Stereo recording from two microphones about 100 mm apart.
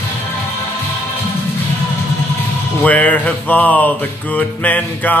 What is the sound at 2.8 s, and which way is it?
Speech, 15° left (ahead or behind).